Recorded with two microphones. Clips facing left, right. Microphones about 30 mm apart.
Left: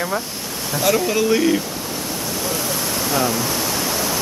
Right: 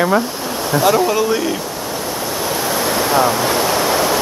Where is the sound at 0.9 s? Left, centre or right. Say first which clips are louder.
Even; centre.